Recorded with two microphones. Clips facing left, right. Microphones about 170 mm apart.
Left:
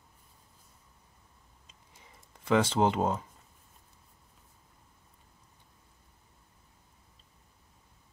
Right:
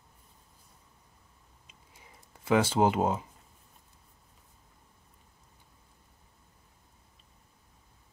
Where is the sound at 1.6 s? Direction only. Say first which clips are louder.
Right 2 dB; 10° right (ahead or behind).